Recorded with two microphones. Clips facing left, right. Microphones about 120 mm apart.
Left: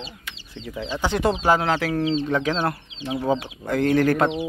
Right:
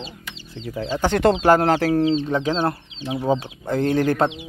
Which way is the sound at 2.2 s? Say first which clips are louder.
Right 1 dB; 20° right (ahead or behind).